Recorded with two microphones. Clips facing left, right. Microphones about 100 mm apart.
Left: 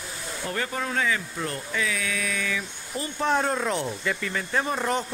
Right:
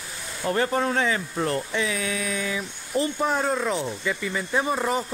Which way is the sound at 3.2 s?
5° right (ahead or behind).